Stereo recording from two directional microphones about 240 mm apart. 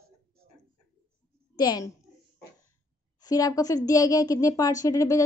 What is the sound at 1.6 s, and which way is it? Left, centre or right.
Speech, centre.